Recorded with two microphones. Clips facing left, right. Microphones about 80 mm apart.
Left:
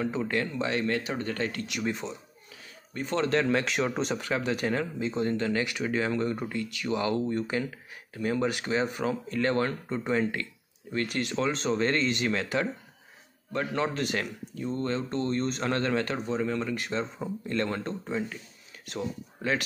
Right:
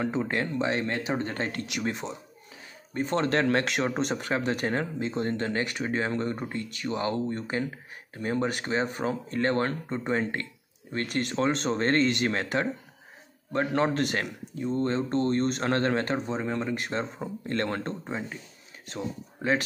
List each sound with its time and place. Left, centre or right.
0.0 s speech: right
2.9 s speech: right
3.3 s speech: right
12.3 s speech: right
14.2 s speech: right
15.1 s speech: right
18.0 s speech: right